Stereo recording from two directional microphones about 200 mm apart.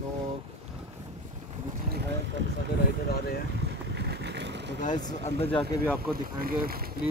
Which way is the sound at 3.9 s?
60° right (ahead or behind).